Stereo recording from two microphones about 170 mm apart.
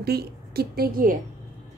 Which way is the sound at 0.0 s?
65° right (ahead or behind).